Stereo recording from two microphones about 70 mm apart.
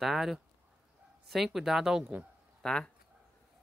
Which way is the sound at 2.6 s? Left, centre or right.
Centre.